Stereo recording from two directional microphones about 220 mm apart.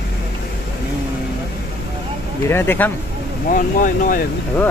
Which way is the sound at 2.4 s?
10° left (ahead or behind).